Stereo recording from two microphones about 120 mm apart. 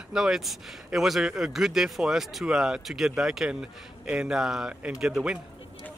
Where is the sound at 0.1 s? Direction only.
5° right (ahead or behind).